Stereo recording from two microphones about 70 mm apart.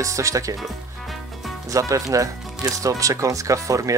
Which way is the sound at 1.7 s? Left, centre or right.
Right.